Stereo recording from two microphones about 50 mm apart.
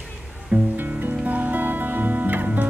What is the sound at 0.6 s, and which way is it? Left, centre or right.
Music, right.